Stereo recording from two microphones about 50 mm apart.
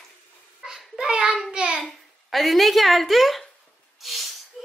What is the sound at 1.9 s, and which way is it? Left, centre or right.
Speech, centre.